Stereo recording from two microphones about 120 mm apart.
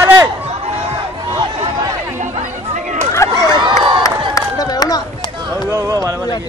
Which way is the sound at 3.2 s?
25° left (ahead or behind).